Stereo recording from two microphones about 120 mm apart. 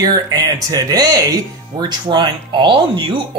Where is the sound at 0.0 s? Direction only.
35° right (ahead or behind).